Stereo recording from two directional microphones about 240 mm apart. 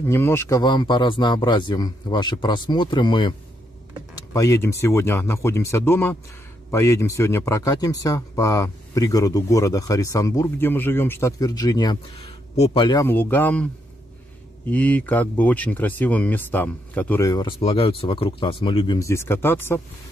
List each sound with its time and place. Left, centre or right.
0.0 s speech: centre
14.7 s speech: centre